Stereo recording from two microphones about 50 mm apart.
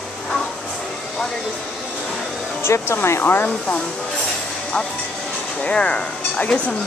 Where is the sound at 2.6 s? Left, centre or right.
Left.